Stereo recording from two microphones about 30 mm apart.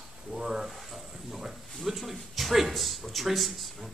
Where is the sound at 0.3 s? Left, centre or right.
Right.